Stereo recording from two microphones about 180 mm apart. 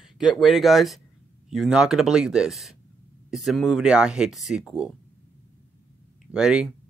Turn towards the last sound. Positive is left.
turn(degrees=-5)  # may be behind; listen again after turning